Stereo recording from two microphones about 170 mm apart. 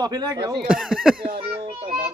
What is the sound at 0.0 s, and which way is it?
Speech, 25° right (ahead or behind).